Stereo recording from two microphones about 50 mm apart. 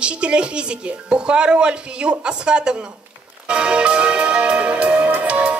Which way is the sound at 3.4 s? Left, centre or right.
Right.